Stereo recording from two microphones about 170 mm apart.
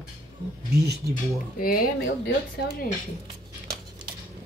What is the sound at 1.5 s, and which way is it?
Speech, 60° left (ahead or behind).